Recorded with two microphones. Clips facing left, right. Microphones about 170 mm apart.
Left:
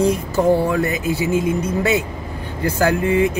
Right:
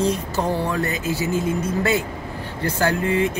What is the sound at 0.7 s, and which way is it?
Speech, 15° left (ahead or behind).